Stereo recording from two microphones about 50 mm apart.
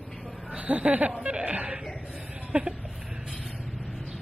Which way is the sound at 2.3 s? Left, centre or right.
Right.